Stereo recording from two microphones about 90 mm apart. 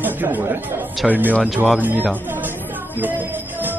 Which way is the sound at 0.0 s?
20° right (ahead or behind).